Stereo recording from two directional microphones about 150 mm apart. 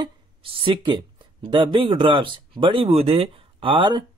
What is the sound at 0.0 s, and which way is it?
Speech, 35° right (ahead or behind).